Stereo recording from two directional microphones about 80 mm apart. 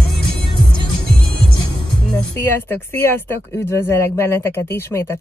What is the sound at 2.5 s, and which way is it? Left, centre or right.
Speech, left.